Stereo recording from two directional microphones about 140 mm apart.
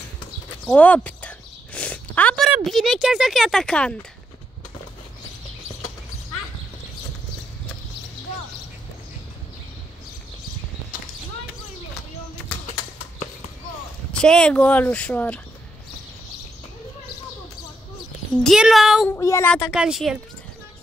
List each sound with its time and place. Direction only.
0.7 s a sound: 10° left (ahead or behind)
2.6 s speech: centre (ahead or behind)
14.1 s speech: 5° left (ahead or behind)
18.4 s speech: centre (ahead or behind)
19.1 s speech: 20° left (ahead or behind)
19.7 s speech: 5° right (ahead or behind)